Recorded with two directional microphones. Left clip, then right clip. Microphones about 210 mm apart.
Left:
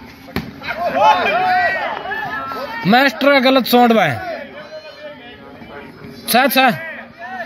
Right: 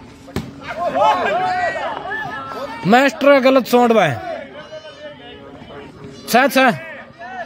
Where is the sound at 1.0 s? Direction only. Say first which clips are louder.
Left 3 dB; centre (ahead or behind).